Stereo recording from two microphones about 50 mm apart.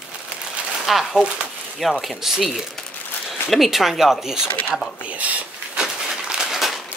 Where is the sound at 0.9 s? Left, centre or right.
Centre.